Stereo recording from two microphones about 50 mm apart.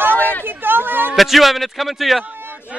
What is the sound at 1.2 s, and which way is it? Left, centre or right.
A man's voice, centre.